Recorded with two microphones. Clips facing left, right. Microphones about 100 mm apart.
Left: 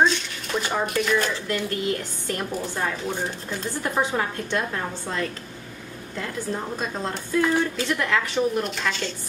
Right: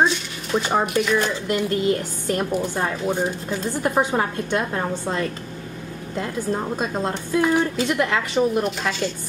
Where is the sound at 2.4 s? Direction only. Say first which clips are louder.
Right 3 dB; 15° right (ahead or behind).